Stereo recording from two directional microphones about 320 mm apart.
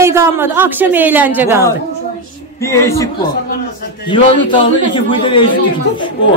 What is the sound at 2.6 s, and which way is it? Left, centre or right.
A man's voice, centre.